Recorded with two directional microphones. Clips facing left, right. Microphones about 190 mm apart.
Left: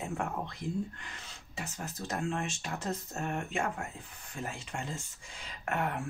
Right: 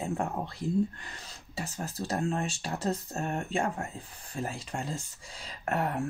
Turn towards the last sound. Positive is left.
turn(degrees=-35)  # may be behind; listen again after turning